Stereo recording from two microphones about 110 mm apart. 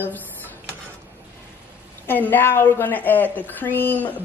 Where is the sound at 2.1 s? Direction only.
20° left (ahead or behind).